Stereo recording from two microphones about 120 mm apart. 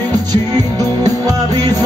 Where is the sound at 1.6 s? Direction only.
35° right (ahead or behind).